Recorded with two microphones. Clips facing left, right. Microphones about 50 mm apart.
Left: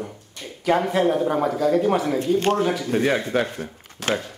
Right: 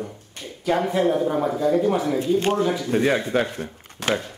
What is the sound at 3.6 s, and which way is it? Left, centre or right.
Speech, right.